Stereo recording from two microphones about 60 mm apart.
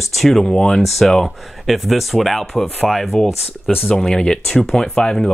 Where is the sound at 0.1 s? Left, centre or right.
Centre.